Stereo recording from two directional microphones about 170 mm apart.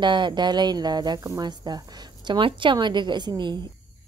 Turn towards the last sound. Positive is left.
turn(degrees=-25)  # may be behind; listen again after turning